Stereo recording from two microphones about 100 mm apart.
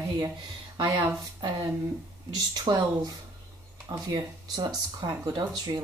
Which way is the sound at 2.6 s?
40° right (ahead or behind).